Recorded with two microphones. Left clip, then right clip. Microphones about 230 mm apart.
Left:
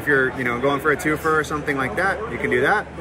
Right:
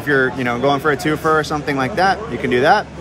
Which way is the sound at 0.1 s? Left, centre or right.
Right.